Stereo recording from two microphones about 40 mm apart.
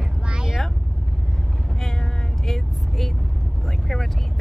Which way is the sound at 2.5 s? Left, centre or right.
Centre.